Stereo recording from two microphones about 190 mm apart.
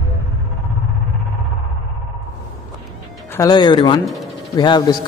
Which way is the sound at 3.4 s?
20° left (ahead or behind).